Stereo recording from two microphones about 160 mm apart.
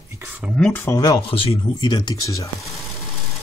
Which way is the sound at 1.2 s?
35° left (ahead or behind).